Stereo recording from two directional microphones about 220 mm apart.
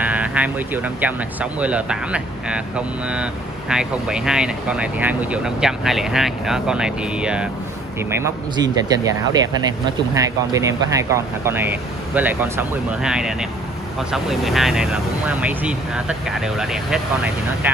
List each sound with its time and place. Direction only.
0.0 s speech: 5° right (ahead or behind)
8.1 s speech: 15° right (ahead or behind)